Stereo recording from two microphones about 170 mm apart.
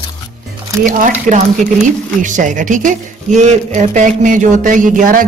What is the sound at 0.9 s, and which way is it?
Speech, 50° right (ahead or behind).